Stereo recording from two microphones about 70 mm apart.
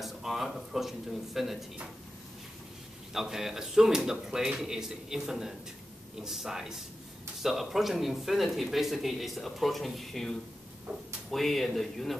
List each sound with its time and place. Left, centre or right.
0.0 s speech: centre
3.1 s speech: centre
10.9 s speech: right
11.2 s speech: centre